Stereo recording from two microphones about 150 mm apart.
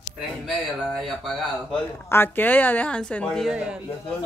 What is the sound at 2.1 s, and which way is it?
Speech, 15° left (ahead or behind).